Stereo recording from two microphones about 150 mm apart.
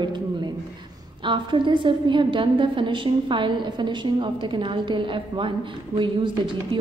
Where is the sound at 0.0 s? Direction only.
30° right (ahead or behind).